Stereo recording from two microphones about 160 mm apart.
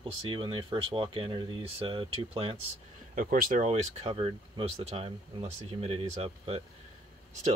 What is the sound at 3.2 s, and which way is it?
Speech, 60° right (ahead or behind).